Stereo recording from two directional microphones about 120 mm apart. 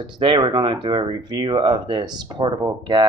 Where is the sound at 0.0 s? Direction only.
40° right (ahead or behind).